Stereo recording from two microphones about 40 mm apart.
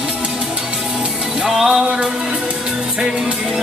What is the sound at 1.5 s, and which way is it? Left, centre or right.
Music, centre.